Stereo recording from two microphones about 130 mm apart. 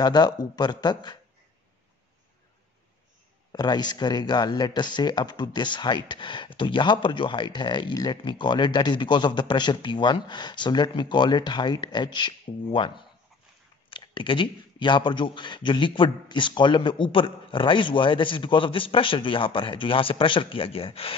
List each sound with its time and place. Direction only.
0.0 s speech: 30° left (ahead or behind)
3.5 s speech: 35° left (ahead or behind)